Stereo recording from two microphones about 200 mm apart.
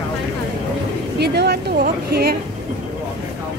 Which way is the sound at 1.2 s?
55° right (ahead or behind).